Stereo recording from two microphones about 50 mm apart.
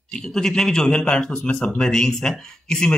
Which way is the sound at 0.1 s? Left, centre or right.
Centre.